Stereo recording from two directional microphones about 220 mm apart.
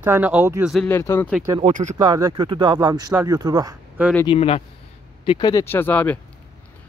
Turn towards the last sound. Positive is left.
turn(degrees=10)  # may be behind; listen again after turning